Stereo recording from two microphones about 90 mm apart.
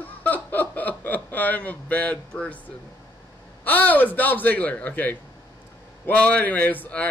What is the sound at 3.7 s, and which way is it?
Speech, 20° left (ahead or behind).